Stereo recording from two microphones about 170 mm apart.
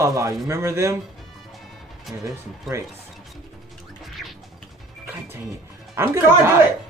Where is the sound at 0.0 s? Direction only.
20° right (ahead or behind).